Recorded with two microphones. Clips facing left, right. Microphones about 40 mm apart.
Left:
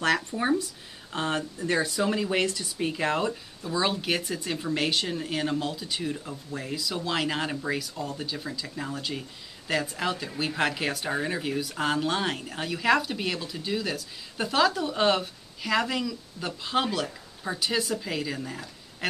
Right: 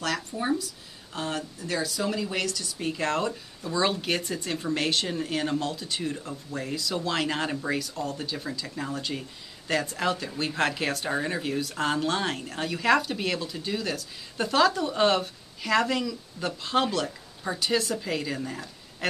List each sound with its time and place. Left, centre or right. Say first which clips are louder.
0.3 s speech: left 2 dB; centre
1.1 s speech: left 3 dB; left
2.9 s speech: right 1 dB; centre